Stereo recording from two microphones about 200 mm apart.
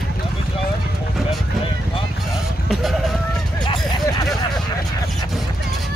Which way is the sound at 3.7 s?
20° left (ahead or behind).